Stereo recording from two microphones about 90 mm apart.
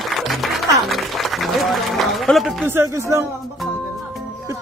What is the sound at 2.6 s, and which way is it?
Speech, 30° right (ahead or behind).